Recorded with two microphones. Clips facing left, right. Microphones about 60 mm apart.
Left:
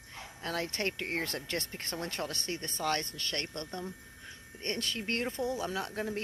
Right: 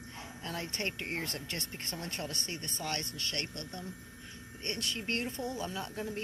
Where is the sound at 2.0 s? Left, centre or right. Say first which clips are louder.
Left 3 dB; left.